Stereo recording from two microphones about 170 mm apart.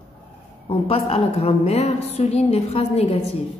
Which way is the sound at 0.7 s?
35° left (ahead or behind).